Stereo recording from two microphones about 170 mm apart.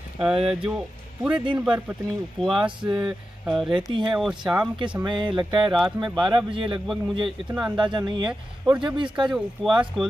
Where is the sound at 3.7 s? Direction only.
30° right (ahead or behind).